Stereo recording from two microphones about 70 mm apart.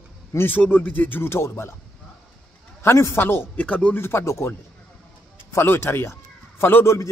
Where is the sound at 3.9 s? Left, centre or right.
Left.